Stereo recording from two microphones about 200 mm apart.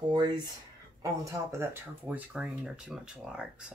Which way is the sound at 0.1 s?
20° right (ahead or behind).